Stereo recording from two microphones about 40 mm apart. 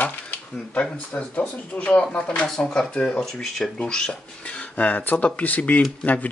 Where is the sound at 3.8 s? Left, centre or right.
Left.